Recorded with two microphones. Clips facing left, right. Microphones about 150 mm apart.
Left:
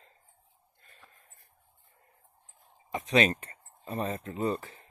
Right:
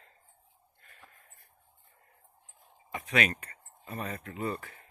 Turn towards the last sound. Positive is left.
turn(degrees=20)  # may be behind; listen again after turning